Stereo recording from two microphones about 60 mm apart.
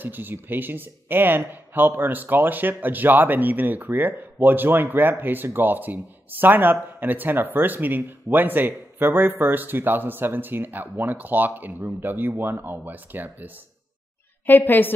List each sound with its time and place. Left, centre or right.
0.0 s speech: right
14.4 s a woman's voice: left